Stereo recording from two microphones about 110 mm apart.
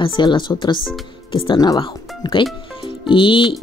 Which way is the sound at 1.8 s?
45° left (ahead or behind).